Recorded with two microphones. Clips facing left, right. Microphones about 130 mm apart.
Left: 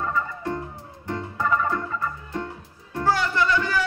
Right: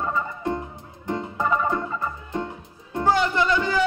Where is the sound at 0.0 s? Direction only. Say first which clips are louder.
Right 1 dB; 20° right (ahead or behind).